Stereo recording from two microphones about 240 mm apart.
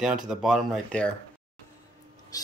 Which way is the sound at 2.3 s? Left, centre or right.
Centre.